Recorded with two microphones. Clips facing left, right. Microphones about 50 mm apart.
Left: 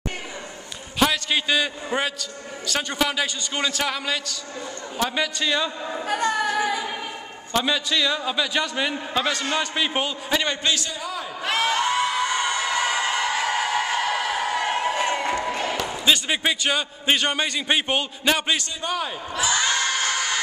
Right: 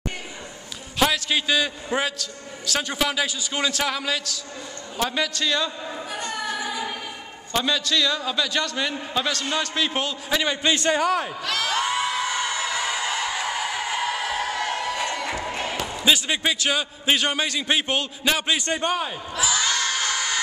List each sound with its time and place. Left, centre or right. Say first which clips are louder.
0.9 s a man's voice: even; centre
6.0 s choir: left 8 dB; left
7.5 s a man's voice: even; centre
10.9 s a man's voice: right 10 dB; right
11.4 s speech: left 3 dB; left
11.8 s crowd: left 2 dB; centre
13.4 s a sound: left 3 dB; left
13.9 s music: left 2 dB; centre; by 15.3 s left
15.5 s a man's voice: left 2 dB; centre
18.7 s a man's voice: right 5 dB; right
19.0 s speech: left 1 dB; centre
19.5 s a sound: left 2 dB; centre